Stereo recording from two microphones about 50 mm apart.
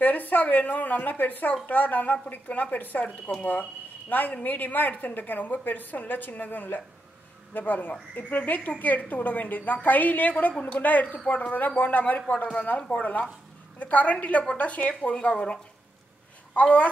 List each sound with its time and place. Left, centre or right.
0.0 s a woman's voice: left
12.6 s a woman's voice: left